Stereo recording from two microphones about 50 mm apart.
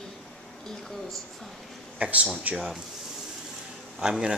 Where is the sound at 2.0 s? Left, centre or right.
Right.